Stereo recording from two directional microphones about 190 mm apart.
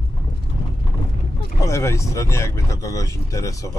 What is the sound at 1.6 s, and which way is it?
Speech, 15° left (ahead or behind).